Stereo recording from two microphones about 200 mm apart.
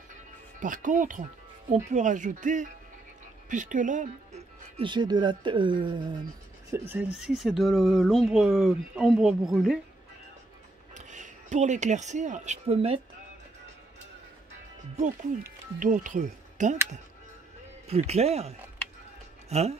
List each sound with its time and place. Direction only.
0.6 s speech: 40° right (ahead or behind); by 6.1 s 25° right (ahead or behind)
6.7 s speech: 10° right (ahead or behind)
11.0 s speech: 40° right (ahead or behind)
15.8 s speech: 40° right (ahead or behind)
17.8 s speech: 30° right (ahead or behind)